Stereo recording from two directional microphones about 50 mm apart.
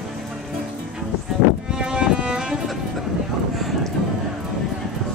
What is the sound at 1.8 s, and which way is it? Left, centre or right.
Music, centre.